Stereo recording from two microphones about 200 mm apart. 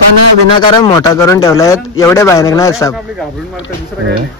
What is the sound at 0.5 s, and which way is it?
A man's voice, 25° left (ahead or behind).